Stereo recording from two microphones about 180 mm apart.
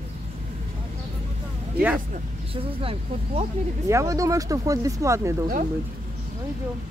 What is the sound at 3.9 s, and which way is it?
Speech, 15° right (ahead or behind).